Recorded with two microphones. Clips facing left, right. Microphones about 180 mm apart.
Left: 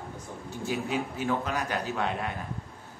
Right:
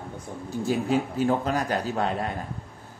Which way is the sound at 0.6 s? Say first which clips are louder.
Right 6 dB; 35° right (ahead or behind).